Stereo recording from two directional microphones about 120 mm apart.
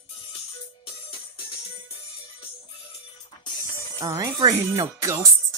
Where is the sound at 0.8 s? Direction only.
45° left (ahead or behind).